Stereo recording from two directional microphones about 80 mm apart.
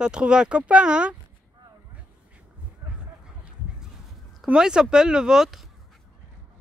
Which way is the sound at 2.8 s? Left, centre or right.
Right.